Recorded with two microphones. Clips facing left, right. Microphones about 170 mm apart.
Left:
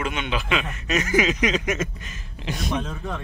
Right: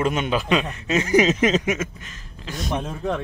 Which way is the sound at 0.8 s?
25° right (ahead or behind).